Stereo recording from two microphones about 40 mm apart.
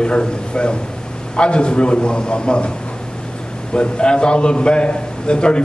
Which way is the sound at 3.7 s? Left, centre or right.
Left.